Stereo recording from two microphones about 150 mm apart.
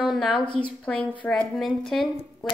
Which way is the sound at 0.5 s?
35° left (ahead or behind).